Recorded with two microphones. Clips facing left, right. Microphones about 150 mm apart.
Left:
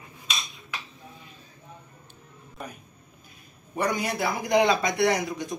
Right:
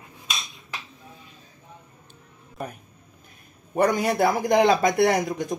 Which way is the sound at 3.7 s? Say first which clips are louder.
Right 6 dB; 50° right (ahead or behind).